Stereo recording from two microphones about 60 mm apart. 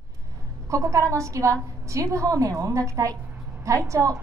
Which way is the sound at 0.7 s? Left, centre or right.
Right.